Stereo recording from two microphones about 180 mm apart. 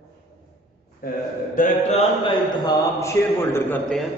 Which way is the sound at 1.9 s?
25° left (ahead or behind).